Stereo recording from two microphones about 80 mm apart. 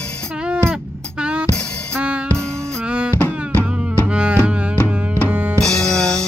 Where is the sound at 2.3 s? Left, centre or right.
Centre.